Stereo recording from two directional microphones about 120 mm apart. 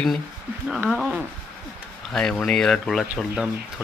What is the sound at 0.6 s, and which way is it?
Speech, 5° right (ahead or behind).